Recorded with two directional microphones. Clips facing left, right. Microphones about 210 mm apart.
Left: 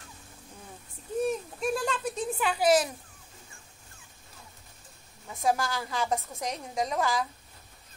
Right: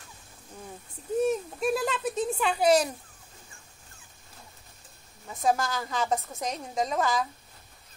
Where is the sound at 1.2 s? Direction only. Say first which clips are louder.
Right 2 dB; 5° right (ahead or behind).